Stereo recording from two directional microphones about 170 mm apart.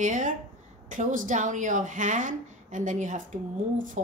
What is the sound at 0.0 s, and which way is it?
Speech, 45° right (ahead or behind).